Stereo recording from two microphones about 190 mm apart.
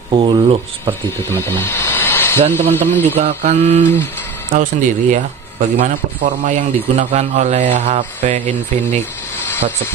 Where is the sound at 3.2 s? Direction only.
35° right (ahead or behind).